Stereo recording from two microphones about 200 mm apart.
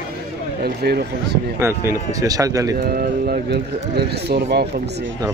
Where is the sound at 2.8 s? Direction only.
45° right (ahead or behind).